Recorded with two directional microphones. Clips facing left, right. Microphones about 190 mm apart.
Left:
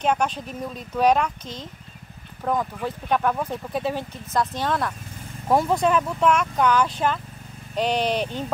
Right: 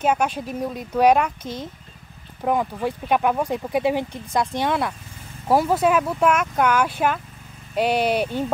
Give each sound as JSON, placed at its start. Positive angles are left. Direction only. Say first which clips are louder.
{"t": 0.0, "sound": "speech", "louder": "right 2 dB", "side_deg": -5}